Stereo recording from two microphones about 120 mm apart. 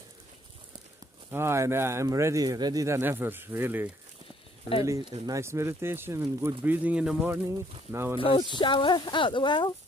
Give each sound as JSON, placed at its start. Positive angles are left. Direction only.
{"t": 1.3, "sound": "speech", "side_deg": -20}
{"t": 5.2, "sound": "speech", "side_deg": -25}
{"t": 7.4, "sound": "speech", "side_deg": -25}
{"t": 8.2, "sound": "speech", "side_deg": 45}